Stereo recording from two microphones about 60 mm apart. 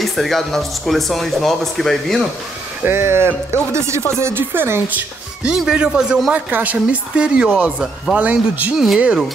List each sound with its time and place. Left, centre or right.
0.0 s speech: centre
2.8 s speech: right
5.4 s speech: centre
6.3 s a woman's voice: right; by 8.2 s centre
8.2 s a woman's voice: right
8.7 s speech: centre